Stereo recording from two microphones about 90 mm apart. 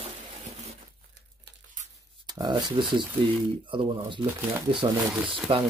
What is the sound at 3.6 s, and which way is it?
Speech, 70° right (ahead or behind).